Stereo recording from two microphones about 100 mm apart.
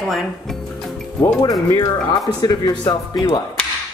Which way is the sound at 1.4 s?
45° left (ahead or behind).